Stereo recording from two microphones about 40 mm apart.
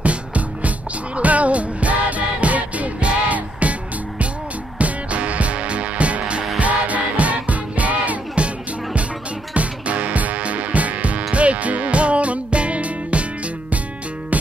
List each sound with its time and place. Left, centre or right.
0.0 s music: right
4.7 s music: right
9.5 s music: right